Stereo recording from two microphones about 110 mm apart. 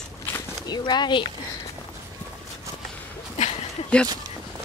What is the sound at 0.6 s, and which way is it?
Speech, 40° left (ahead or behind).